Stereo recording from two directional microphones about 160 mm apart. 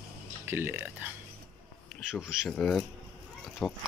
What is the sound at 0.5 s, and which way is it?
Speech, 15° right (ahead or behind).